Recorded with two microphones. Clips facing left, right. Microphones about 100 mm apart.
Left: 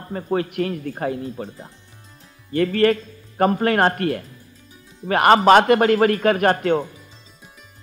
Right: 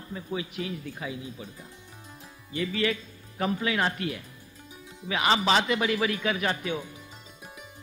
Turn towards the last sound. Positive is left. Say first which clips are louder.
# left 12 dB
turn(degrees=55)  # may be behind; listen again after turning